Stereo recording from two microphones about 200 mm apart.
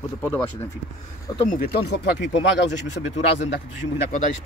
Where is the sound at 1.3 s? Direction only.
40° left (ahead or behind).